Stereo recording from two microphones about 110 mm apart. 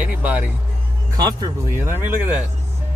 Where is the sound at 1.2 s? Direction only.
40° right (ahead or behind).